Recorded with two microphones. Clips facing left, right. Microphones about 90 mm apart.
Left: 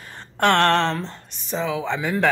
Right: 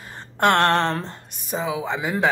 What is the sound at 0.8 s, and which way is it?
Speech, 45° right (ahead or behind).